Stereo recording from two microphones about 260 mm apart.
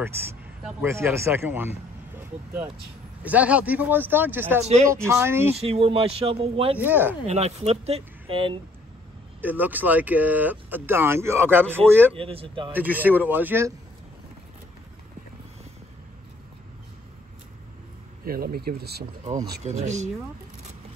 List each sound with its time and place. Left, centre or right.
0.7 s speech: centre
5.6 s speech: right
6.8 s speech: centre
7.2 s speech: right
9.4 s speech: centre
12.1 s speech: right
12.7 s speech: centre
18.2 s speech: right
19.6 s speech: right